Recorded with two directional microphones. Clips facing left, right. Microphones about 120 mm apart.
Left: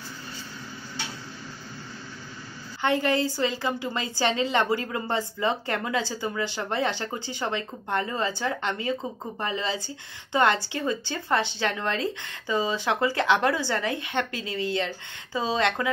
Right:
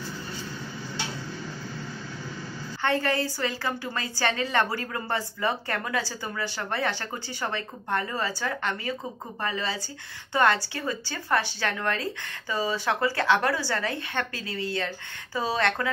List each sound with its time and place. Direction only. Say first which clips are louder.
2.8 s a woman's voice: left 2 dB; 15° left (ahead or behind)